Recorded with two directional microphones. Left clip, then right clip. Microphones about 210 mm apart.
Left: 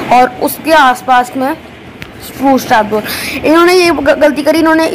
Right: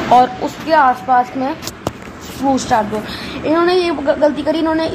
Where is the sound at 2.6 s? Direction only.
10° left (ahead or behind).